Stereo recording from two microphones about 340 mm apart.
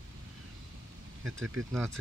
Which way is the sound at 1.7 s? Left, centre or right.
Centre.